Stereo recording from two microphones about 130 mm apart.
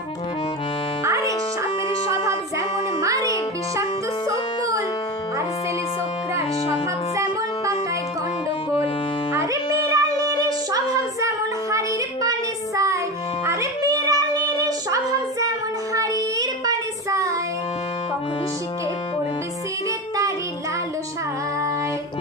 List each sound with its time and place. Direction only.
1.0 s music: 25° right (ahead or behind)
3.0 s music: 25° right (ahead or behind)
9.3 s music: 25° right (ahead or behind)
13.5 s a sound: 25° right (ahead or behind)
15.9 s child singing: 25° right (ahead or behind)